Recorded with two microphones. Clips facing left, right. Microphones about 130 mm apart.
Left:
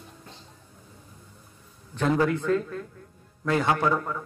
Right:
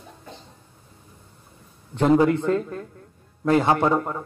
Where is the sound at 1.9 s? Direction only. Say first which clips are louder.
Right 6 dB; 25° right (ahead or behind).